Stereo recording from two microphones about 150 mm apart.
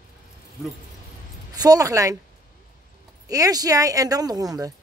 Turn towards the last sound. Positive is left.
turn(degrees=-25)  # may be behind; listen again after turning